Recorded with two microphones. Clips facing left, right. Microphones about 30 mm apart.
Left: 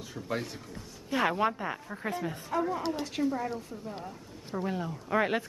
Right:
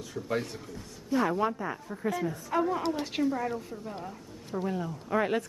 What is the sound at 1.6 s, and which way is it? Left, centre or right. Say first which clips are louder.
Speech: right 1 dB; left.